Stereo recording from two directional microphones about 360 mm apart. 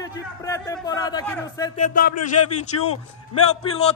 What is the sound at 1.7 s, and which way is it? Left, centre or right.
Speech, left.